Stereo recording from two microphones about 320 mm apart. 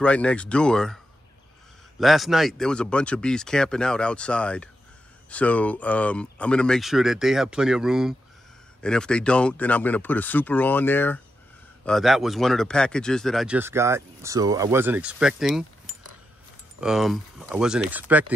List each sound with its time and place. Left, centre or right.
0.0 s speech: centre
16.8 s speech: centre